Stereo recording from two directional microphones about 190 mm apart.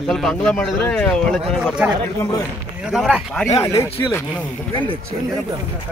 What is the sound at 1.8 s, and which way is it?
A man's voice, 10° right (ahead or behind).